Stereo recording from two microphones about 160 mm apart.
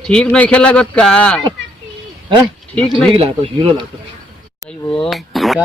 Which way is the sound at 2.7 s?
Centre (ahead or behind).